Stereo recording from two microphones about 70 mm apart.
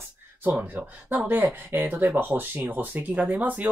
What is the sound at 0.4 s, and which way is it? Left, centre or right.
Speech, right.